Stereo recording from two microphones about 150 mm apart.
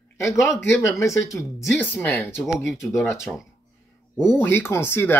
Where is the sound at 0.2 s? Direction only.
20° left (ahead or behind).